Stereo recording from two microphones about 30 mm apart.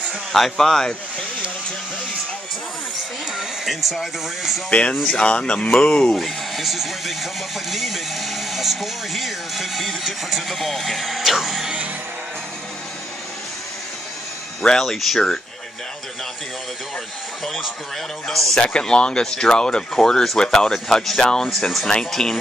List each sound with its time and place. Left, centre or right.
0.3 s speech: centre
4.0 s speech: centre
4.6 s speech: left
5.0 s speech: left
6.1 s speech: centre
14.6 s speech: left
18.3 s speech: centre
18.6 s speech: left
20.7 s speech: centre
21.2 s speech: left
21.5 s speech: centre
22.1 s speech: centre